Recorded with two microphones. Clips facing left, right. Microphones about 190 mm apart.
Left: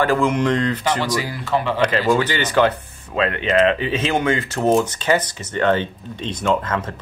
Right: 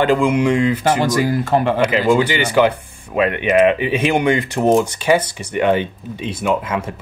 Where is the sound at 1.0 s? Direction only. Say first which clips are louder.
Right 7 dB; 50° right (ahead or behind).